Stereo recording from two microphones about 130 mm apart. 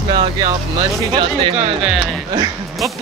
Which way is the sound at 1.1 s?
45° right (ahead or behind).